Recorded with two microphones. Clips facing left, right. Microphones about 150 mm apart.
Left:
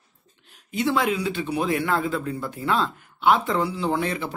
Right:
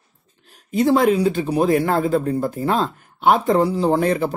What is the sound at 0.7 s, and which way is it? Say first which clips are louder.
Speech: right 7 dB; 40° right (ahead or behind).